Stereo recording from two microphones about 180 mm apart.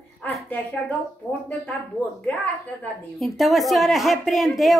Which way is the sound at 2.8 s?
Centre (ahead or behind).